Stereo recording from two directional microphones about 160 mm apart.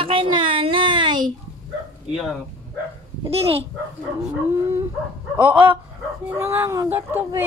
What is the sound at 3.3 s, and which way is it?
Speech, 40° right (ahead or behind).